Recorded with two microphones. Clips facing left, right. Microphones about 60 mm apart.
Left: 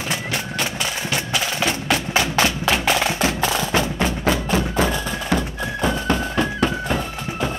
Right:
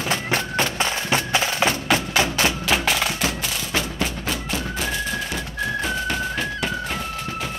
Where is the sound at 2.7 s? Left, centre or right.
Left.